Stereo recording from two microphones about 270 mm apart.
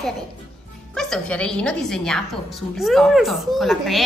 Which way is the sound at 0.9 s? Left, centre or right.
Centre.